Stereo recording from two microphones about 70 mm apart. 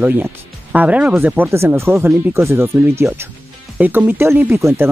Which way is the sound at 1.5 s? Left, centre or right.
Right.